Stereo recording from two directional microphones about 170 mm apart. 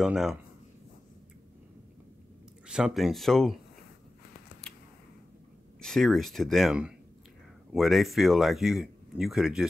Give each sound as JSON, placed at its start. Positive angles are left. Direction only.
{"t": 0.0, "sound": "speech", "side_deg": -5}
{"t": 2.7, "sound": "speech", "side_deg": -5}
{"t": 5.8, "sound": "speech", "side_deg": 0}